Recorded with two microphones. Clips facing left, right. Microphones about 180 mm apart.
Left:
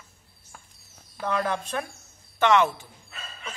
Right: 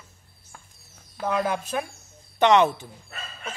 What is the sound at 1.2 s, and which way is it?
A man's voice, 10° right (ahead or behind).